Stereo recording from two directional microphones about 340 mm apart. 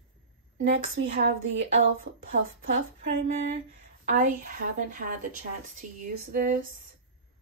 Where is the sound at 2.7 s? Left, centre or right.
Right.